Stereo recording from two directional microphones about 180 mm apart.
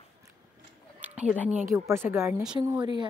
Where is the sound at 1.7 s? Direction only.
15° right (ahead or behind).